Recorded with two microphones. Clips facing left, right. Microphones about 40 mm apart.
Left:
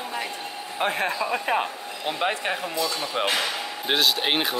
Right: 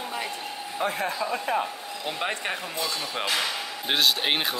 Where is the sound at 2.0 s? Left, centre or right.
Centre.